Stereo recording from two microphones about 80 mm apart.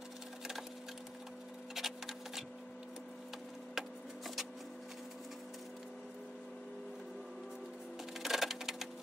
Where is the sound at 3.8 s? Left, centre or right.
Centre.